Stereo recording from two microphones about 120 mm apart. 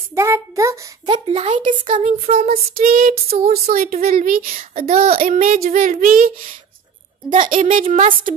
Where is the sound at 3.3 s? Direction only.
90° right.